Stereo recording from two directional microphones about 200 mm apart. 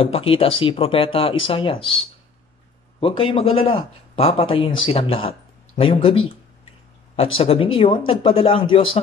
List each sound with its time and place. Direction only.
0.0 s a man's voice: 30° left (ahead or behind)
3.0 s a man's voice: 25° left (ahead or behind)
7.3 s a man's voice: 30° left (ahead or behind)